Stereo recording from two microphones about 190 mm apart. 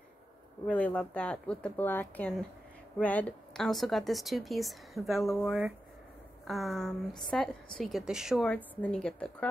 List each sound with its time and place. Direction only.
0.7 s a woman's voice: 5° left (ahead or behind)